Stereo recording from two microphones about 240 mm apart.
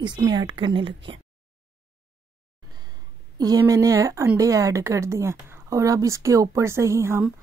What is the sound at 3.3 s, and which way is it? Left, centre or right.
Speech, centre.